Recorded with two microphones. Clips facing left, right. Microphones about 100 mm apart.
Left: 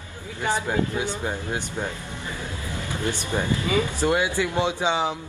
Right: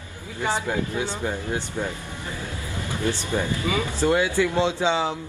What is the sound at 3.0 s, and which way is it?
Speech, 20° left (ahead or behind).